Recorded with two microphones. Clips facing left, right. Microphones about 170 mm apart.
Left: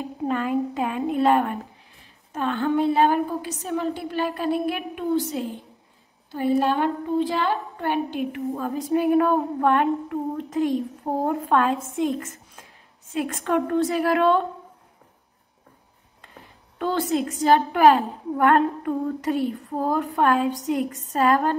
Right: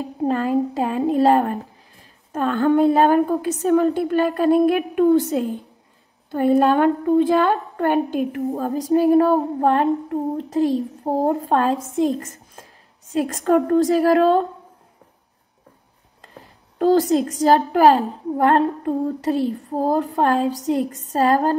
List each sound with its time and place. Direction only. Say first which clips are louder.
0.2 s female singing: right 4 dB; 35° right (ahead or behind)
2.3 s a woman's voice: right 5 dB; 40° right (ahead or behind)
8.5 s female singing: right 3 dB; 40° right (ahead or behind)
16.2 s female singing: right 3 dB; 35° right (ahead or behind)